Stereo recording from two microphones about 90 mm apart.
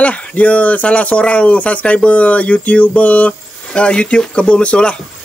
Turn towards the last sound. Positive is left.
turn(degrees=10)  # may be behind; listen again after turning